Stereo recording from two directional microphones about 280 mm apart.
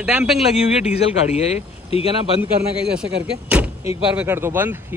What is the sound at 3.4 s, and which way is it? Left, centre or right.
Door, centre.